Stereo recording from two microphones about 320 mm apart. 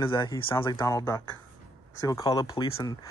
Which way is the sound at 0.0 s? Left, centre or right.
Centre.